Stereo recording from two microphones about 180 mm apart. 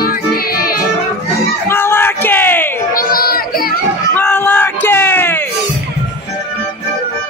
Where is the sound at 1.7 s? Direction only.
15° left (ahead or behind).